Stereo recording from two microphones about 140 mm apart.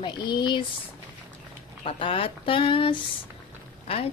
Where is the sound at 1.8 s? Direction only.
40° left (ahead or behind).